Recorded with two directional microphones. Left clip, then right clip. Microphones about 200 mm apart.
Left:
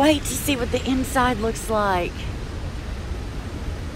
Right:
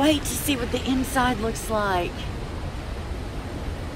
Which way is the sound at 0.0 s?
10° right (ahead or behind).